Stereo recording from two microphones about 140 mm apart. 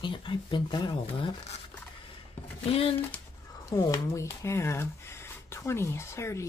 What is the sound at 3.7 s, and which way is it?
Speech, 25° left (ahead or behind).